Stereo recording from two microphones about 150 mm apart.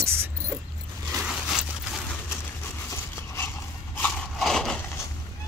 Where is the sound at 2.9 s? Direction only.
15° left (ahead or behind).